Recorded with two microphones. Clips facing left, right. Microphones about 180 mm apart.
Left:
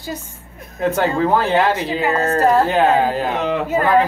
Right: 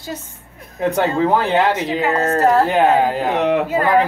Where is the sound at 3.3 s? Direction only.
65° right (ahead or behind).